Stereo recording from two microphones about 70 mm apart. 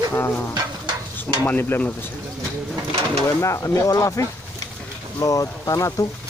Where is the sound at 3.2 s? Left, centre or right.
Left.